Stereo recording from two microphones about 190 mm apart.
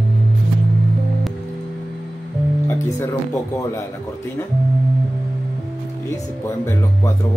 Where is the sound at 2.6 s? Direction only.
10° left (ahead or behind).